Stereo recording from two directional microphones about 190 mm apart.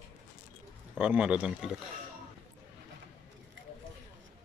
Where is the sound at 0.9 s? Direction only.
5° right (ahead or behind).